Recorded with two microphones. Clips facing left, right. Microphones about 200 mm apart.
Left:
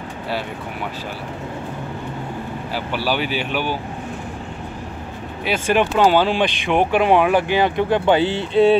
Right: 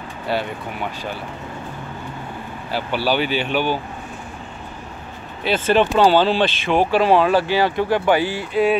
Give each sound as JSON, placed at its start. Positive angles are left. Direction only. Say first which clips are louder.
{"t": 2.7, "sound": "speech", "louder": "right 3 dB", "side_deg": 5}
{"t": 5.4, "sound": "speech", "louder": "right 2 dB", "side_deg": 10}